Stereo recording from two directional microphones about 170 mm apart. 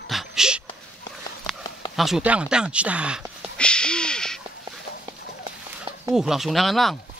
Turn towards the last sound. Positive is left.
turn(degrees=0)  # may be behind; listen again after turning